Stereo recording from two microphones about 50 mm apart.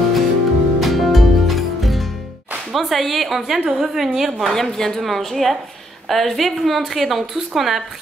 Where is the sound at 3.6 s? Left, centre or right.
Centre.